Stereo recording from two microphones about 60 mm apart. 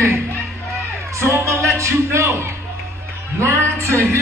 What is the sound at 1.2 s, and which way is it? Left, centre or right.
A man's voice, right.